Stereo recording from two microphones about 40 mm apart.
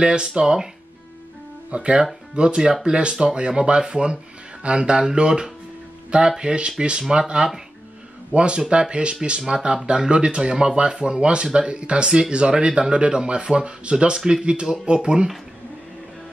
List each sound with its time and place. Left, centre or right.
0.0 s speech: right
1.7 s speech: right